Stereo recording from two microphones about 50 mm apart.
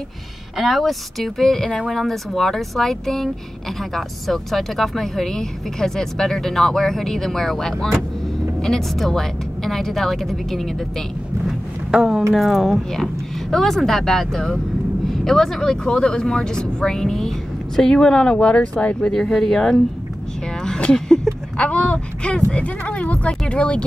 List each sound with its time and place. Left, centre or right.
0.6 s speech: centre
11.9 s speech: centre
12.4 s speech: centre; by 19.1 s left
19.3 s speech: centre
20.6 s a sound: centre
21.5 s speech: left